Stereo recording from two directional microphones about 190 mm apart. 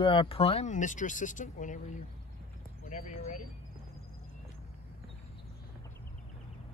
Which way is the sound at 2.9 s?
35° left (ahead or behind).